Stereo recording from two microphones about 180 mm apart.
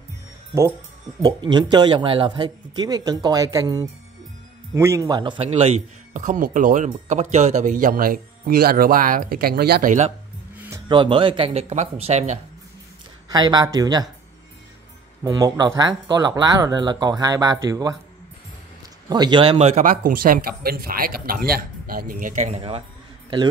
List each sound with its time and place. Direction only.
1.2 s speech: 25° right (ahead or behind); by 10.1 s 45° right (ahead or behind)
10.9 s speech: 30° right (ahead or behind)
13.3 s speech: 20° right (ahead or behind)
15.2 s speech: 20° right (ahead or behind)
19.0 s speech: 25° right (ahead or behind)